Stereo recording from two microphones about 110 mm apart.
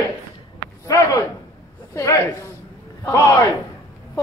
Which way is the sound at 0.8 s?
30° left (ahead or behind).